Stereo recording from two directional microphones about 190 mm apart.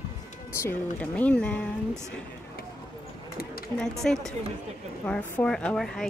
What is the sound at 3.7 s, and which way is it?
Speech, 5° left (ahead or behind).